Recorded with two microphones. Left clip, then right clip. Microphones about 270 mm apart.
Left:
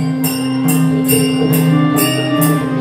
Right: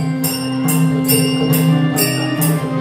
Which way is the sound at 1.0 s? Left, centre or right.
Centre.